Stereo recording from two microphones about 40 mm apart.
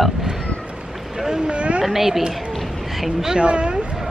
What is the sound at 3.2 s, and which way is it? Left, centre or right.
Speech, centre.